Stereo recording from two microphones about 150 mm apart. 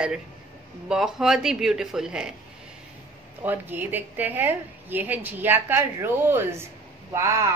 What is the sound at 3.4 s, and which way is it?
A woman's voice, 15° right (ahead or behind).